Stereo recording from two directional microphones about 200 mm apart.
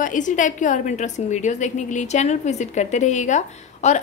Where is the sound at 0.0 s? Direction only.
40° left (ahead or behind).